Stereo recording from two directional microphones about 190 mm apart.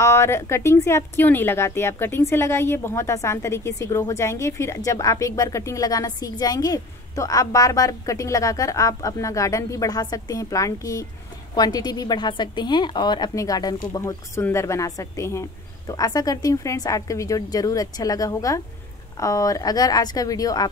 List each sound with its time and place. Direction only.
0.0 s a woman's voice: 15° left (ahead or behind)